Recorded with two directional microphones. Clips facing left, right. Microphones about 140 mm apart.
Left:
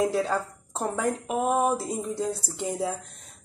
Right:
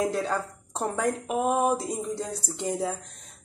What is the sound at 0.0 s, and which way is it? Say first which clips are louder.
Speech: left 2 dB; centre (ahead or behind).